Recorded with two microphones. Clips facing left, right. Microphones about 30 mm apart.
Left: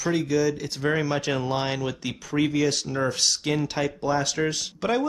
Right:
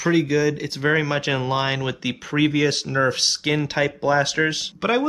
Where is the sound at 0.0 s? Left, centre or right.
Right.